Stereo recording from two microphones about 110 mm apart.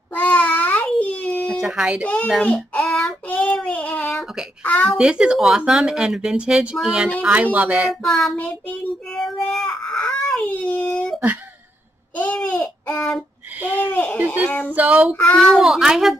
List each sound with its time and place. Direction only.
0.1 s a sound: 15° left (ahead or behind)
1.6 s speech: 5° right (ahead or behind)
2.2 s child singing: 5° left (ahead or behind)
4.6 s speech: 15° left (ahead or behind)
4.9 s speech: 10° right (ahead or behind)
7.9 s a child's voice: centre (ahead or behind)
8.6 s baby cry: 10° left (ahead or behind)
12.2 s a sound: 15° left (ahead or behind)
14.2 s a sound: 15° right (ahead or behind)
14.7 s speech: 15° right (ahead or behind)
15.1 s speech: 15° left (ahead or behind)
15.4 s a child's voice: centre (ahead or behind)